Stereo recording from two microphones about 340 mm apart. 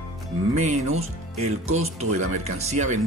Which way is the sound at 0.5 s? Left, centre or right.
Centre.